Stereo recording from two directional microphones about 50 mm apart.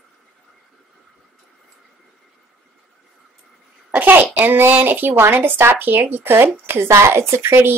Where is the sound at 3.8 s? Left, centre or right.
Right.